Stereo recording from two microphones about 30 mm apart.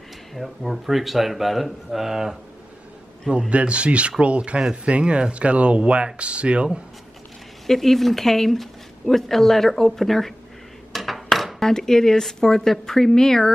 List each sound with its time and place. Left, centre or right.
0.3 s speech: centre
3.3 s speech: right
7.6 s speech: centre
10.9 s dishes: centre
11.6 s speech: centre